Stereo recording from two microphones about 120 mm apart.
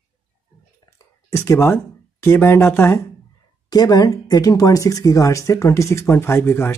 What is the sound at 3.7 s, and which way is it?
Speech, 30° left (ahead or behind).